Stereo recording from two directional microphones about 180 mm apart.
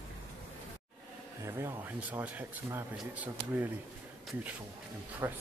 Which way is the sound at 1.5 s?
15° right (ahead or behind).